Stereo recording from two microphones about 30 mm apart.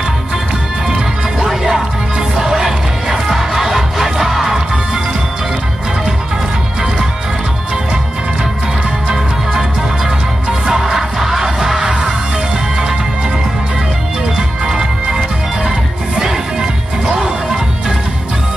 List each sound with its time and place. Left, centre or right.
1.4 s music: centre
9.1 s music: centre
14.7 s music: centre